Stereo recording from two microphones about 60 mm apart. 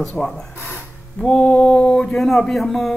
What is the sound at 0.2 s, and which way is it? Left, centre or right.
Speech, centre.